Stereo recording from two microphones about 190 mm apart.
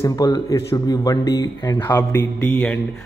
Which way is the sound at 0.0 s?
20° left (ahead or behind).